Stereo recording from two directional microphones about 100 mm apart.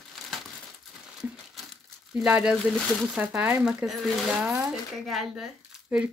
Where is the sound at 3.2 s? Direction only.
15° right (ahead or behind).